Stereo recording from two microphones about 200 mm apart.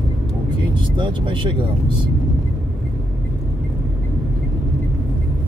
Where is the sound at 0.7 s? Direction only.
25° right (ahead or behind).